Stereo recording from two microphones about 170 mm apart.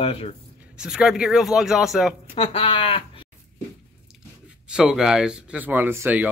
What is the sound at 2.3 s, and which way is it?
Speech, 35° left (ahead or behind).